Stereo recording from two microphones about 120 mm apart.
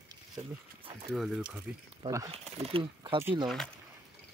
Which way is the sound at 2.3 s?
55° right (ahead or behind).